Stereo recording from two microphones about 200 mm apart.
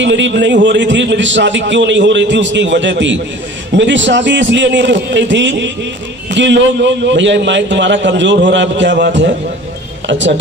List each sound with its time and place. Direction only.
0.0 s a man's voice: 65° right (ahead or behind)